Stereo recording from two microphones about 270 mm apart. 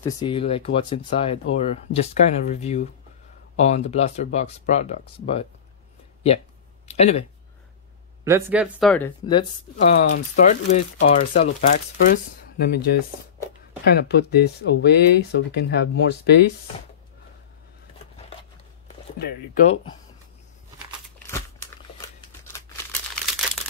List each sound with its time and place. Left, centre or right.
0.0 s speech: centre
6.9 s speech: left
8.2 s speech: centre
9.2 s speech: centre; by 16.5 s left
19.1 s speech: left
19.7 s speech: centre